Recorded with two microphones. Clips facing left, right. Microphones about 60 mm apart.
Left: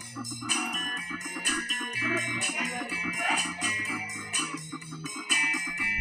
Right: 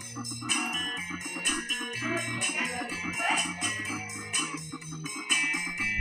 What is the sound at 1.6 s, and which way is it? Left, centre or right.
Music, left.